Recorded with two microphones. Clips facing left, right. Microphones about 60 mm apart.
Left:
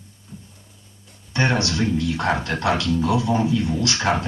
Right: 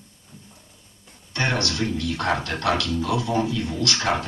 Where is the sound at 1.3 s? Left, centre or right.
Left.